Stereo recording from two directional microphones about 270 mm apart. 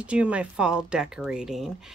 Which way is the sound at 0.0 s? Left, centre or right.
Centre.